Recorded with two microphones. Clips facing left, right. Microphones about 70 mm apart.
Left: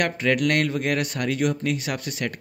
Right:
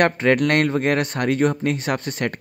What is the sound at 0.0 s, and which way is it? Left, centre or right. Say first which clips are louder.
Speech: right 5 dB; right.